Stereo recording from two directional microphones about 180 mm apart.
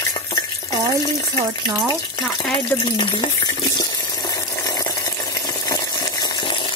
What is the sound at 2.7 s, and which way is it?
Water, 25° left (ahead or behind).